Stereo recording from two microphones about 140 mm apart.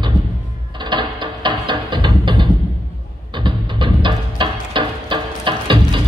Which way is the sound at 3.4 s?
35° right (ahead or behind).